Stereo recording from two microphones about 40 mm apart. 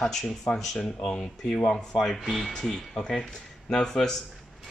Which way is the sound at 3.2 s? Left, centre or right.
Centre.